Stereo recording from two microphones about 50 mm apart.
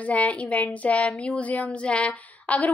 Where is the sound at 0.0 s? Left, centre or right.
Left.